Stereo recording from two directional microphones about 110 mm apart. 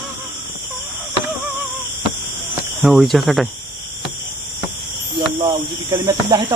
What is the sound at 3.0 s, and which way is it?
Speech, centre (ahead or behind).